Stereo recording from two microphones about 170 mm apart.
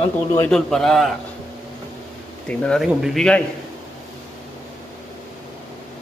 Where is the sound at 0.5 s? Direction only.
5° left (ahead or behind).